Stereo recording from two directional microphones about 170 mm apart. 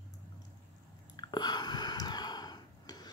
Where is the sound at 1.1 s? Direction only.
25° left (ahead or behind).